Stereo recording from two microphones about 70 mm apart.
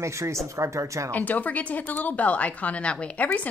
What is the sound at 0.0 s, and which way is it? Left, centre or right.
A woman's voice, right.